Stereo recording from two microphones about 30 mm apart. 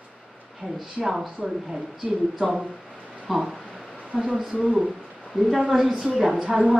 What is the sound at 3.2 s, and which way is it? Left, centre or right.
Speech, centre.